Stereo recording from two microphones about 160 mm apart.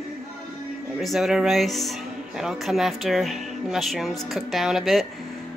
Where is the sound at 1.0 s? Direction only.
Centre (ahead or behind).